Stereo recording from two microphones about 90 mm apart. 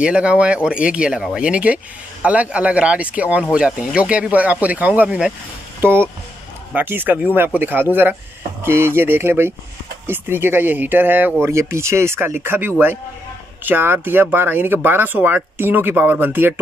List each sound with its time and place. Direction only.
0.0 s speech: 10° right (ahead or behind)
5.8 s speech: 25° right (ahead or behind)
11.4 s speech: 30° right (ahead or behind)